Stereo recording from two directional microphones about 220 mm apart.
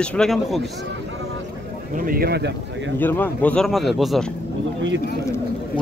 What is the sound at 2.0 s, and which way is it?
Speech, 40° right (ahead or behind).